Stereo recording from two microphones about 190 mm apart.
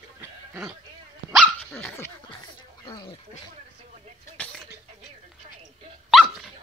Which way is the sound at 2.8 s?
25° left (ahead or behind).